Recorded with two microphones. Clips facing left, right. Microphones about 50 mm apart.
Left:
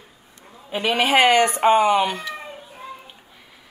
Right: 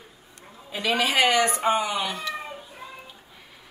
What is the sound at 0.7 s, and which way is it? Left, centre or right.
Speech, left.